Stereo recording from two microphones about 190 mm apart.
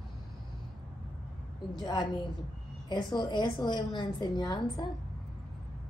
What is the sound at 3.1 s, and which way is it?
A woman's voice, 25° left (ahead or behind).